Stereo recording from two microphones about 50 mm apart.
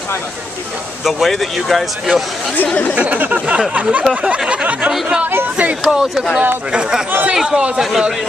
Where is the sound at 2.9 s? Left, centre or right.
Right.